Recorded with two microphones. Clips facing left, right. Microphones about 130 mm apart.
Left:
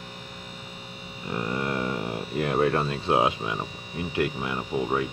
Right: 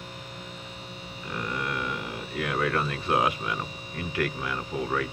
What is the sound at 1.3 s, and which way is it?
Speech, 30° left (ahead or behind).